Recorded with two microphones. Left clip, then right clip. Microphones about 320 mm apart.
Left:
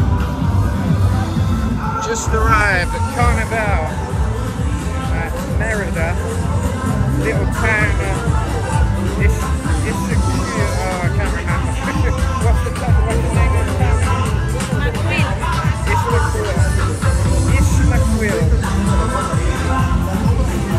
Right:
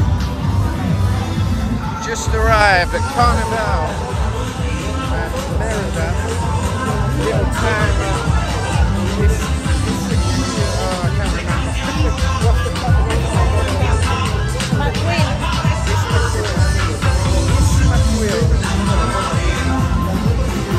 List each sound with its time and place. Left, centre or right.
2.5 s speech: centre